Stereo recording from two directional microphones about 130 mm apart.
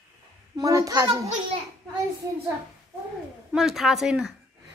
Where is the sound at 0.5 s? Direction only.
25° right (ahead or behind).